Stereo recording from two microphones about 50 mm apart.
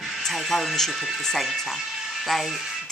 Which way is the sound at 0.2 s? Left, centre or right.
Centre.